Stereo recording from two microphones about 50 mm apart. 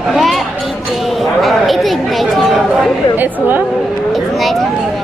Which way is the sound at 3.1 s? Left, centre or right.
Right.